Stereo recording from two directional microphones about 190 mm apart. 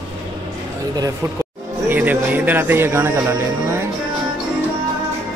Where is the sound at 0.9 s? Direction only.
20° right (ahead or behind).